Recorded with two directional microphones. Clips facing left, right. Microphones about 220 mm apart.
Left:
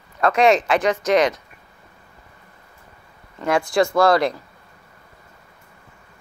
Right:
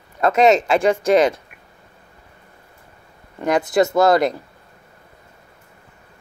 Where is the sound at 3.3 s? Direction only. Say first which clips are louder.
Right 2 dB; 20° right (ahead or behind).